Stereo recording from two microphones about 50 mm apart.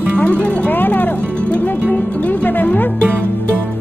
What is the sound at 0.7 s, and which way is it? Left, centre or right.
Music, left.